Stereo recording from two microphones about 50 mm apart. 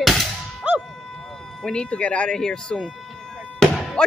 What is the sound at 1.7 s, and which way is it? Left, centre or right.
Speech, left.